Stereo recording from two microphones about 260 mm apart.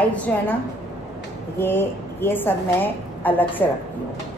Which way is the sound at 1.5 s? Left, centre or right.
Centre.